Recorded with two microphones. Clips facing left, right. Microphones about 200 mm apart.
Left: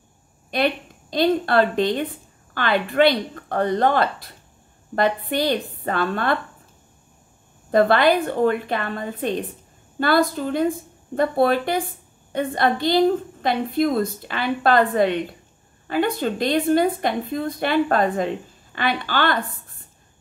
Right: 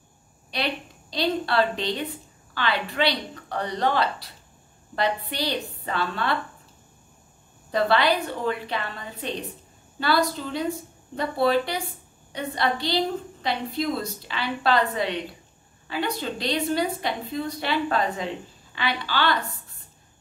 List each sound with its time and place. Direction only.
0.5 s a woman's voice: 50° left (ahead or behind)
7.7 s a woman's voice: 50° left (ahead or behind)